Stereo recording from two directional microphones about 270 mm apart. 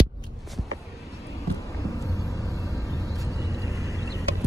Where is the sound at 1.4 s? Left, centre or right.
Centre.